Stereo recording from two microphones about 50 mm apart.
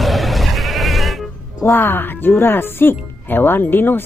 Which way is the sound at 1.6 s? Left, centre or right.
Left.